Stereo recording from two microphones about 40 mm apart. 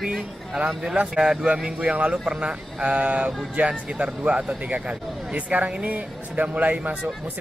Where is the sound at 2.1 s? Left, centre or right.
Centre.